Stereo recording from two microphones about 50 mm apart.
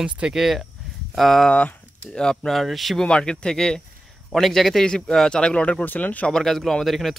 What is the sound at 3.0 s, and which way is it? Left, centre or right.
A man's voice, centre.